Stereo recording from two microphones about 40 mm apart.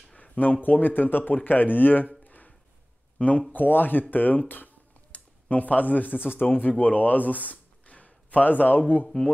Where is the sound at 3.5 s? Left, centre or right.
Left.